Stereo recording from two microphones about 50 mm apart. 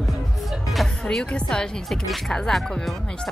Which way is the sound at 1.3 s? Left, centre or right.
Centre.